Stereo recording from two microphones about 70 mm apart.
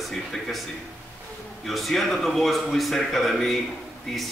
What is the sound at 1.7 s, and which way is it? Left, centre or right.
A man's voice, centre.